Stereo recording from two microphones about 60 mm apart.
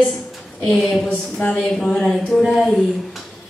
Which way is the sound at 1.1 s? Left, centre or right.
Left.